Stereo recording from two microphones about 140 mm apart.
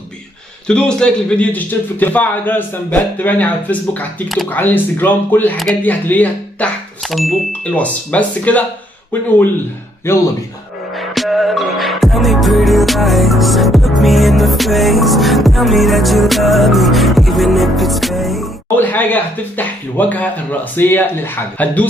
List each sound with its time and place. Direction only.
0.7 s a man's voice: 5° left (ahead or behind)
7.1 s a man's voice: centre (ahead or behind)
10.1 s a man's voice: 20° left (ahead or behind)
11.0 s music: centre (ahead or behind)
18.8 s a man's voice: 15° left (ahead or behind)